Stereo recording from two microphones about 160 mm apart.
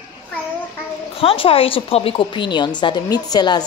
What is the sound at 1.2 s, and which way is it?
A woman's voice, 35° left (ahead or behind).